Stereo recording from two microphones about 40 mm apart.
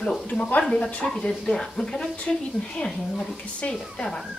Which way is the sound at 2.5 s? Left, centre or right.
Left.